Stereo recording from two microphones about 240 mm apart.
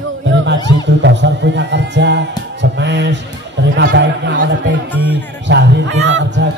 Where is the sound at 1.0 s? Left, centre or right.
Right.